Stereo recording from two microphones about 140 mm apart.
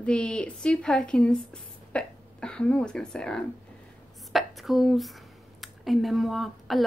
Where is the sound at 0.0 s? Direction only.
5° left (ahead or behind).